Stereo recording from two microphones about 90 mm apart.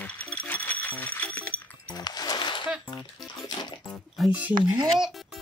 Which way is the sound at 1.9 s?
45° left (ahead or behind).